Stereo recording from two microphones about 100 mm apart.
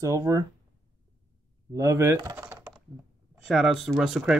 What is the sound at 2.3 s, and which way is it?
Typing, 20° right (ahead or behind).